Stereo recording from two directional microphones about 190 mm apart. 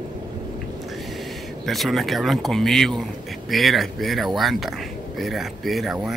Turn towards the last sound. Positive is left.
turn(degrees=0)  # may be behind; listen again after turning